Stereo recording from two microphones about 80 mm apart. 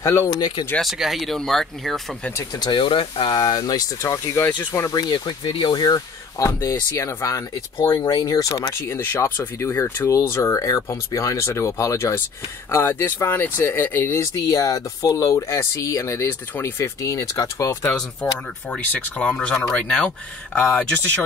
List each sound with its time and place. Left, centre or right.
0.0 s speech: left
0.7 s speech: centre
2.6 s speech: left
4.9 s speech: left
7.9 s speech: left
16.3 s speech: left
17.0 s speech: left
17.9 s speech: centre